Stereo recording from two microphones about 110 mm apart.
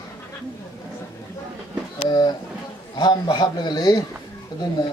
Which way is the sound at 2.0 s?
40° left (ahead or behind).